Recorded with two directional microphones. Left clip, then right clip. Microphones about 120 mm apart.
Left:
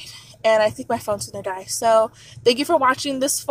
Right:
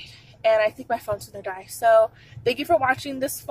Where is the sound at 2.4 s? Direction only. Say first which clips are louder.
Left 6 dB; 20° left (ahead or behind).